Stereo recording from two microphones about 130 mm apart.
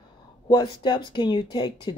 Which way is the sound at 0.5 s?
35° left (ahead or behind).